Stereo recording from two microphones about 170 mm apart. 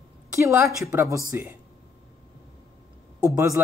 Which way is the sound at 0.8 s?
15° right (ahead or behind).